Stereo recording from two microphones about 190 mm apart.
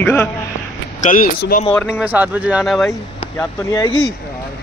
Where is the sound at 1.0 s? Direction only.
45° left (ahead or behind).